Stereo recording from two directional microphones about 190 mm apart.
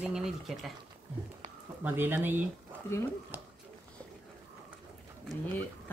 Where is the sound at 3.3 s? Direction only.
10° right (ahead or behind).